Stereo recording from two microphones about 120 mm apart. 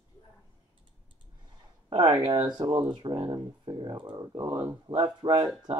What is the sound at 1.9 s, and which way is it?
Speech, 40° right (ahead or behind).